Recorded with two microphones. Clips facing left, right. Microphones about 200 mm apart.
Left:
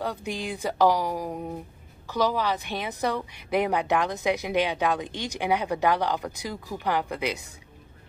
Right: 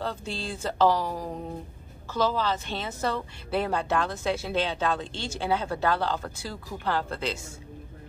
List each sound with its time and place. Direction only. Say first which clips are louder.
0.0 s a woman's voice: left 2 dB; 15° left (ahead or behind)